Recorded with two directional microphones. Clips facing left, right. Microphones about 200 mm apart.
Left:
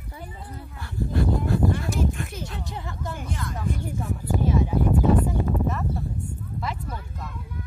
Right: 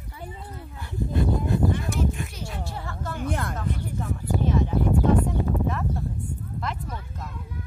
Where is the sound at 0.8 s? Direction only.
20° right (ahead or behind).